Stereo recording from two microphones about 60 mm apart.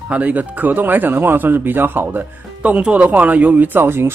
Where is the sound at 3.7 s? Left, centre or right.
Right.